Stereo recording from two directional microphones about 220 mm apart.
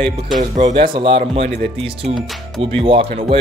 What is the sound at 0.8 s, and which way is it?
Speech, 20° right (ahead or behind).